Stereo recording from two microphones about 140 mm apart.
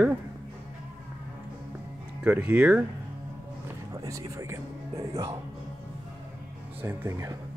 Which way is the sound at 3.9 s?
25° right (ahead or behind).